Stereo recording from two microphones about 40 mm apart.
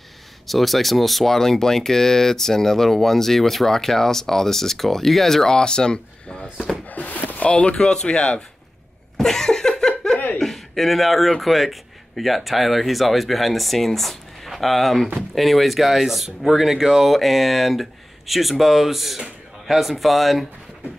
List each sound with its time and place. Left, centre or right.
0.5 s speech: centre; by 6.4 s left
6.9 s a sound: left
7.4 s speech: left
7.7 s speech: centre
9.1 s cough: centre
10.4 s speech: centre